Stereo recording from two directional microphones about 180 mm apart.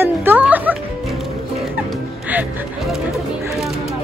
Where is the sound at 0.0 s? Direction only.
10° right (ahead or behind).